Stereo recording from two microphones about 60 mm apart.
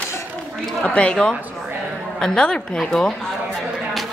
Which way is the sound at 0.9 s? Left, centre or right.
Centre.